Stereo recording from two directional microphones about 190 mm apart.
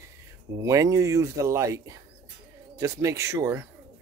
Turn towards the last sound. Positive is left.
turn(degrees=-15)  # may be behind; listen again after turning